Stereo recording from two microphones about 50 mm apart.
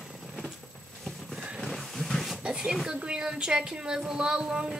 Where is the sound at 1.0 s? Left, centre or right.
Centre.